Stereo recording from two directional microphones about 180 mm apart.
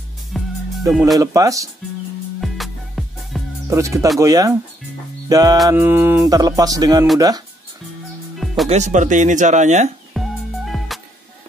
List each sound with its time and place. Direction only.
0.3 s music: centre (ahead or behind)
1.1 s music: 20° right (ahead or behind)
2.4 s music: centre (ahead or behind)
3.6 s speech: 15° right (ahead or behind)
4.2 s music: 20° right (ahead or behind)
8.6 s speech: 40° right (ahead or behind)
10.1 s music: centre (ahead or behind)